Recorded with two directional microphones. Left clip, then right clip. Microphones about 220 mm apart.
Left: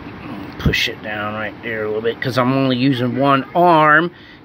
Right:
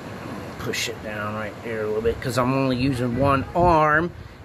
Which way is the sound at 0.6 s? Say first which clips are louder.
Left 9 dB; 15° left (ahead or behind).